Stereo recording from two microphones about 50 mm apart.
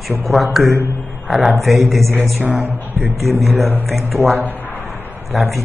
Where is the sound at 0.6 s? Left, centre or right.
Right.